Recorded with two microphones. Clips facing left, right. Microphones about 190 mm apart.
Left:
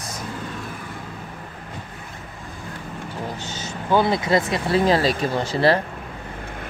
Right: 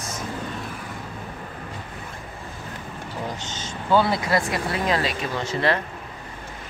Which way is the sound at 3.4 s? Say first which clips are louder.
Left 2 dB; 10° left (ahead or behind).